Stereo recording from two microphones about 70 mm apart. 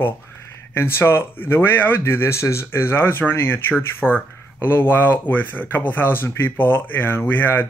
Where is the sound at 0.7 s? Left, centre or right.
Left.